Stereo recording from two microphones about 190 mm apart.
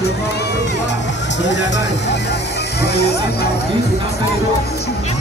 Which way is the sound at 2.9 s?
60° left (ahead or behind).